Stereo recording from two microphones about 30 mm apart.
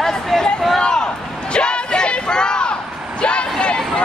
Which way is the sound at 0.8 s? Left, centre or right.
Left.